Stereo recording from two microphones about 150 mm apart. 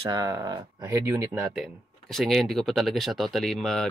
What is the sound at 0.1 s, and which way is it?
Speech, 25° right (ahead or behind).